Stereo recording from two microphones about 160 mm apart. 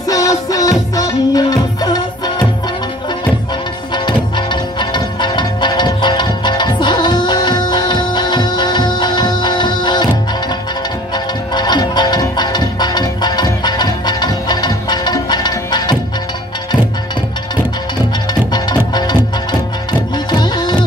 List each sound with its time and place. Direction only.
0.1 s music: 20° left (ahead or behind)
3.9 s music: 30° left (ahead or behind)
11.5 s music: 25° left (ahead or behind)
18.5 s music: 25° left (ahead or behind)
20.2 s music: 25° left (ahead or behind)